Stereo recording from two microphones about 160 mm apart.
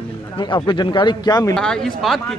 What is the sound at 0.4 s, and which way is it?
Speech, 30° left (ahead or behind).